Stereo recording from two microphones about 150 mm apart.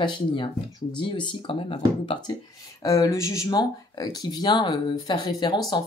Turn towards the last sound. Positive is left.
turn(degrees=25)  # may be behind; listen again after turning